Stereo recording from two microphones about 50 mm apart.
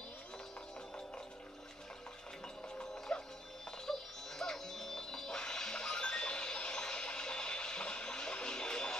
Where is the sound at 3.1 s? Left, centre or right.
Left.